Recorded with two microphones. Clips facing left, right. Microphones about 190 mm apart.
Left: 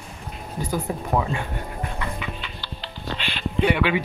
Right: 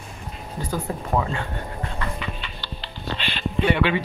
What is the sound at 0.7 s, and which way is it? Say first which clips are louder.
Music: left 1 dB; 10° left (ahead or behind).